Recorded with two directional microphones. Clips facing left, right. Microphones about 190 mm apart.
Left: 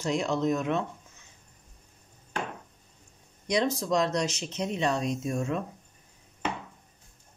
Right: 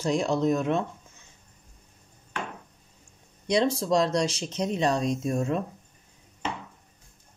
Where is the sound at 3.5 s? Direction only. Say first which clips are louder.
Right 3 dB; 30° right (ahead or behind).